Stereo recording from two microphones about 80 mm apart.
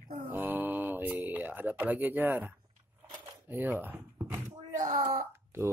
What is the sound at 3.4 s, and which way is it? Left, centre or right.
Speech, right.